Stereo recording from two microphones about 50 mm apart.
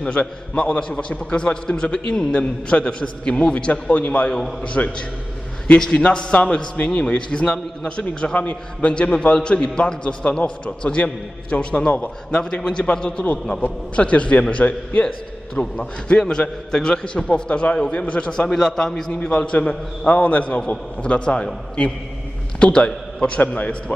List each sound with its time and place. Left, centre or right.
0.0 s a man's voice: left
4.4 s a man's voice: centre
15.6 s a man's voice: centre
19.2 s a man's voice: left
20.1 s a man's voice: left